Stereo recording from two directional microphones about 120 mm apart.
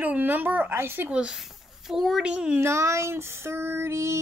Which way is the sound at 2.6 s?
20° right (ahead or behind).